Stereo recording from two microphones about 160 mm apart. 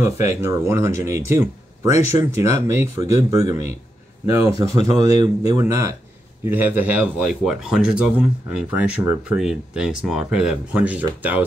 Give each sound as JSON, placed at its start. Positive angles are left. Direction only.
{"t": 0.0, "sound": "speech", "side_deg": -15}